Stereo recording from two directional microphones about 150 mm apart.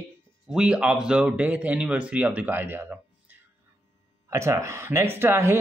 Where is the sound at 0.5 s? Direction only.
5° right (ahead or behind).